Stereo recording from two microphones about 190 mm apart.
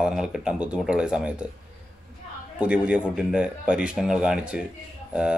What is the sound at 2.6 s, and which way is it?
Speech, 5° right (ahead or behind).